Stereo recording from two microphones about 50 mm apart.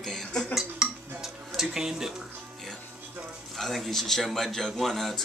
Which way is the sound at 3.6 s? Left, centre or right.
Centre.